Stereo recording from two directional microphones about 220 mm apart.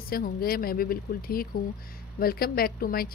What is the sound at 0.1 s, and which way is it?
Speech, 45° left (ahead or behind).